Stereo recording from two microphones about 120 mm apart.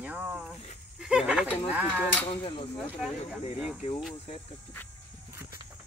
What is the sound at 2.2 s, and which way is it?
Speech, 45° left (ahead or behind).